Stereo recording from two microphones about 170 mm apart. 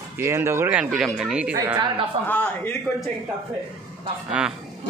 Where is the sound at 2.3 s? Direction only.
10° left (ahead or behind).